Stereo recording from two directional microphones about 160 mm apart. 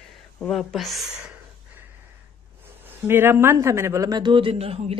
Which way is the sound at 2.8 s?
15° right (ahead or behind).